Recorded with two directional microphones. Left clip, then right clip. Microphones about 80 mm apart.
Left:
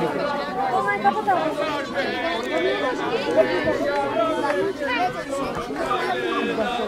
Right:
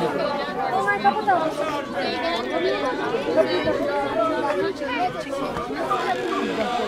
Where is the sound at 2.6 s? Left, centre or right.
Left.